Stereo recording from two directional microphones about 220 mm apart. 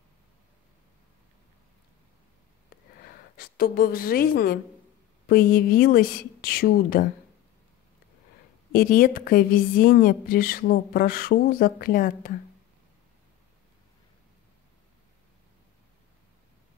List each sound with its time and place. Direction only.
3.3 s a woman's voice: 45° left (ahead or behind)
8.7 s a woman's voice: 40° left (ahead or behind)